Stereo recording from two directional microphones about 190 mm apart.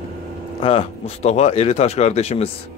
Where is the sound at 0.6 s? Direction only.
30° left (ahead or behind).